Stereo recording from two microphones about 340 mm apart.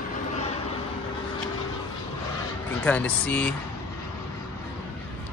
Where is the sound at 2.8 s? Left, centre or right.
Centre.